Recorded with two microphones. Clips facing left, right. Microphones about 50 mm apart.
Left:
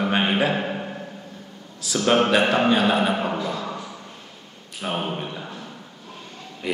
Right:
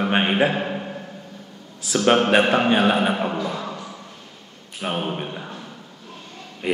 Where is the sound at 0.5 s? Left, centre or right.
Centre.